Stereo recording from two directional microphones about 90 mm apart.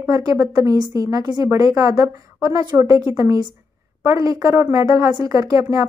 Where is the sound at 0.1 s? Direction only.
35° right (ahead or behind).